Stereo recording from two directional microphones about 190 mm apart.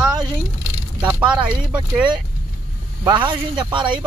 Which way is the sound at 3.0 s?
25° right (ahead or behind).